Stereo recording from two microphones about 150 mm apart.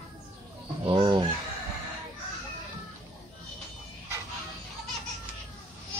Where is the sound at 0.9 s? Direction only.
30° right (ahead or behind).